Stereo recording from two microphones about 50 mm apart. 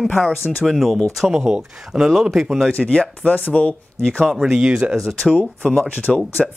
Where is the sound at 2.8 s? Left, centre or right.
Centre.